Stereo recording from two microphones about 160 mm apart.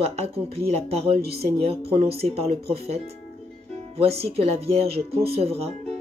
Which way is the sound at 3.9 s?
40° right (ahead or behind).